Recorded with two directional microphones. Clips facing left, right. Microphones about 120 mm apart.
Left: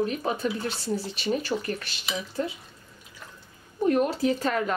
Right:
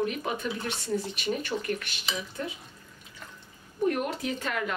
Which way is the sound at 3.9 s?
30° left (ahead or behind).